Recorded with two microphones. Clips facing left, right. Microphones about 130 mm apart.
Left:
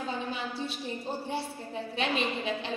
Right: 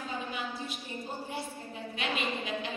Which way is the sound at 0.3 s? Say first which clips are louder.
Left 3 dB; 30° left (ahead or behind).